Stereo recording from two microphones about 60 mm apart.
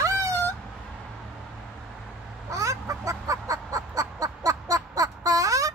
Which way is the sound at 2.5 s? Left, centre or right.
Right.